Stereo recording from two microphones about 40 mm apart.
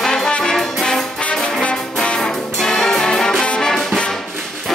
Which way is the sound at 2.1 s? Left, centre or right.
Centre.